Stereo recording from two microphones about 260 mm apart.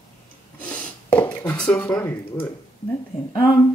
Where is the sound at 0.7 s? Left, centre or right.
Centre.